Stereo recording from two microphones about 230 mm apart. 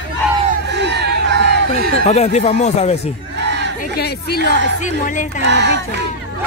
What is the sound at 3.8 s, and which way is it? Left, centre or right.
Speech, left.